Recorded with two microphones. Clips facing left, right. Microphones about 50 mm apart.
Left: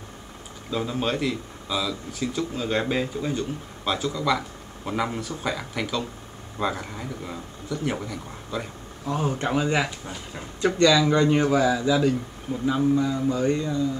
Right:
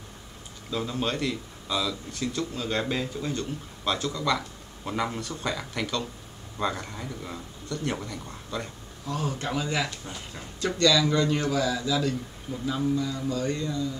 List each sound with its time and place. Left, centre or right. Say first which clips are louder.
0.7 s a man's voice: left 3 dB; centre
9.0 s speech: left 5 dB; left